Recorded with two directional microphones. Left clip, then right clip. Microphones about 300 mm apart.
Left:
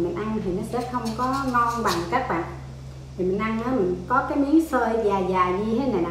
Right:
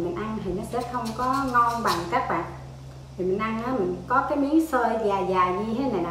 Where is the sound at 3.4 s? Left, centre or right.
Centre.